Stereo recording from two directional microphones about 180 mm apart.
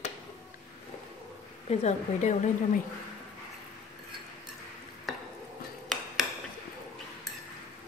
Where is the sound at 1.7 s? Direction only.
40° left (ahead or behind).